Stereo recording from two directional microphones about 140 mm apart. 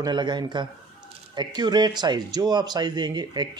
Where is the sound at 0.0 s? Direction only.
35° right (ahead or behind).